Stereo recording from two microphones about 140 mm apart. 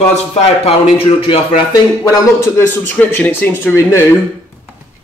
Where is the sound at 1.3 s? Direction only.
35° left (ahead or behind).